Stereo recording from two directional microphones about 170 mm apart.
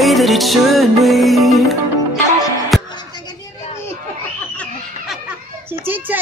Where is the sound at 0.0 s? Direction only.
Centre (ahead or behind).